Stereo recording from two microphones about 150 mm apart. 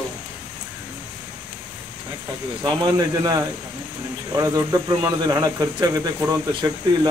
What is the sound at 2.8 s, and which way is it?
Speech, 25° right (ahead or behind).